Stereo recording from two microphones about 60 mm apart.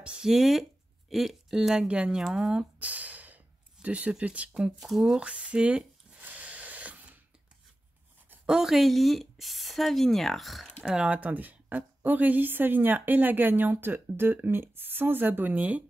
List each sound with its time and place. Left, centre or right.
0.0 s speech: centre
0.3 s speech: centre
2.8 s speech: right
4.7 s speech: centre
5.2 s a sound: centre
8.5 s speech: centre
10.8 s a woman's voice: centre